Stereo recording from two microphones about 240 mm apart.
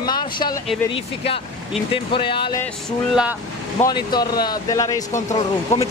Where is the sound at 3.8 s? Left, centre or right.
Centre.